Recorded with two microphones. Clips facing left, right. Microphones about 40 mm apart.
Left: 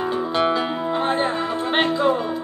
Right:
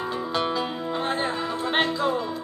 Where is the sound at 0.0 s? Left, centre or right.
Left.